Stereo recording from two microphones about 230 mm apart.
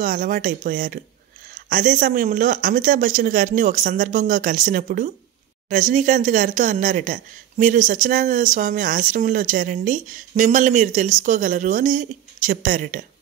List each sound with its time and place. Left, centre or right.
0.0 s speech: right